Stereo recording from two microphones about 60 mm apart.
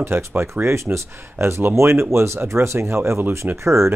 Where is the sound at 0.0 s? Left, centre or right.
Right.